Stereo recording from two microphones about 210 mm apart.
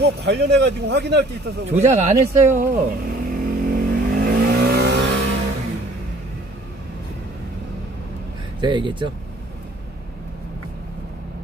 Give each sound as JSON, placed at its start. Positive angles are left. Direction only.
{"t": 0.0, "sound": "a man's voice", "side_deg": -50}
{"t": 1.7, "sound": "vehicle", "side_deg": -30}
{"t": 8.5, "sound": "speech", "side_deg": -20}